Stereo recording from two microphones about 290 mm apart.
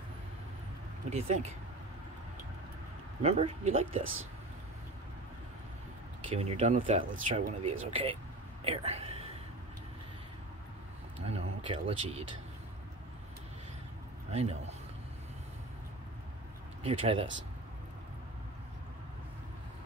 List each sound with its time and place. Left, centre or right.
1.1 s speech: right
3.2 s speech: right
6.3 s speech: right
11.2 s speech: centre
14.3 s speech: right
16.8 s speech: centre